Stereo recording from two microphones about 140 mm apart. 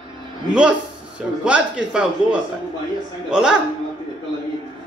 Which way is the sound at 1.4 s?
10° right (ahead or behind).